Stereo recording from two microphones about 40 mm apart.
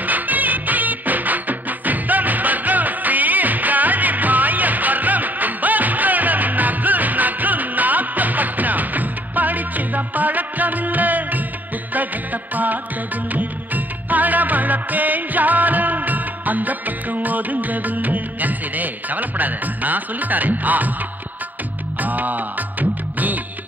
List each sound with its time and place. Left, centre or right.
0.0 s music: right
22.0 s music: right